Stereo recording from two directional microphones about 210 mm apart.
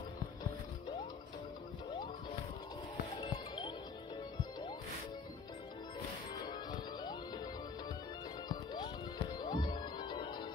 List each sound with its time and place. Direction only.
3.2 s music: 20° left (ahead or behind)
6.5 s music: 20° left (ahead or behind)
8.5 s music: 20° left (ahead or behind)